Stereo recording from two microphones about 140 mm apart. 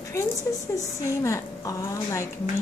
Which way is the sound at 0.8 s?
20° left (ahead or behind).